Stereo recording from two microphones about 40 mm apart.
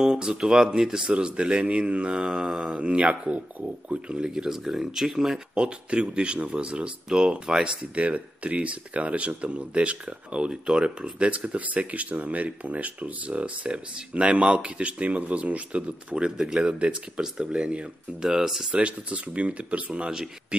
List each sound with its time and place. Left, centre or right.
0.0 s speech: centre
1.0 s speech: right
4.3 s speech: centre
5.5 s speech: right
7.9 s speech: right
11.1 s speech: right
13.7 s speech: right
16.3 s speech: centre
16.6 s speech: right
18.2 s speech: centre
18.7 s speech: right